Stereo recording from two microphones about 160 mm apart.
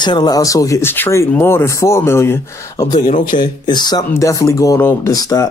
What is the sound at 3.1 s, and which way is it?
Speech, 55° left (ahead or behind).